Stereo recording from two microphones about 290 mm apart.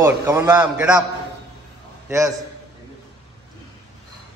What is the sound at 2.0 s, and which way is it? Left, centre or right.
Speech, centre.